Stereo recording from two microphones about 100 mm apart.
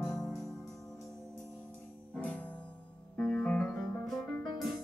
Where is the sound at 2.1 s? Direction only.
15° left (ahead or behind).